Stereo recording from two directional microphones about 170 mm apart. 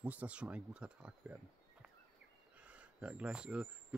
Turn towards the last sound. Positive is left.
turn(degrees=-5)  # may be behind; listen again after turning